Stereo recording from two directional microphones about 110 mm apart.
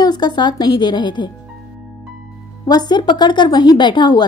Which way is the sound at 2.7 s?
40° left (ahead or behind).